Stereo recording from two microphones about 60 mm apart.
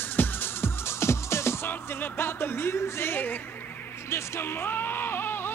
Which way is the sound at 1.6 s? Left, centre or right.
Left.